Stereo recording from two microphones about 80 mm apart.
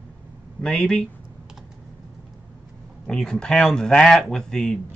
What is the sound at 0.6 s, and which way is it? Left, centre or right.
Speech, centre.